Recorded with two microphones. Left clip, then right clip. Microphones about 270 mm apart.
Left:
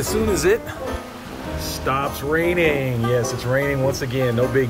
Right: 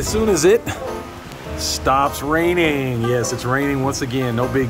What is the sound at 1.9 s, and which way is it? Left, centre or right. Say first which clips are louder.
Speech: right 5 dB; centre.